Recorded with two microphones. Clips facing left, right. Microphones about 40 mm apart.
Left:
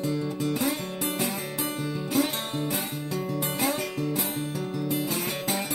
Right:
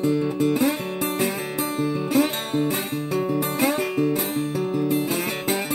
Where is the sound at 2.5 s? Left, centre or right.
Right.